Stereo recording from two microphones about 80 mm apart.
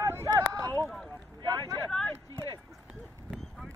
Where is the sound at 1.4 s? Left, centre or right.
Right.